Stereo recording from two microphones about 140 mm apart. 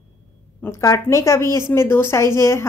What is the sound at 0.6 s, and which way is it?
A woman's voice, 20° left (ahead or behind).